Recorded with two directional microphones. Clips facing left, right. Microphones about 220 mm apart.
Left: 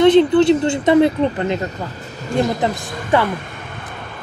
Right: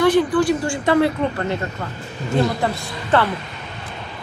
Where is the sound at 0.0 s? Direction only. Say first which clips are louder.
Left 5 dB; 25° left (ahead or behind).